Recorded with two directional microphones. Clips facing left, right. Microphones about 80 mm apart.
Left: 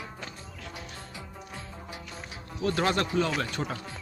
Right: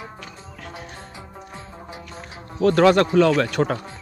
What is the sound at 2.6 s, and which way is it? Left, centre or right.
Speech, right.